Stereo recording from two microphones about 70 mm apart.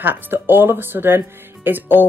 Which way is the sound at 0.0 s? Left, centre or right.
Right.